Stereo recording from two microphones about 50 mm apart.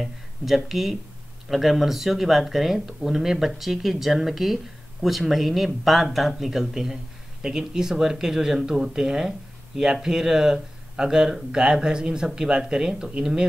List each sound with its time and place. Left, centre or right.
0.7 s speech: centre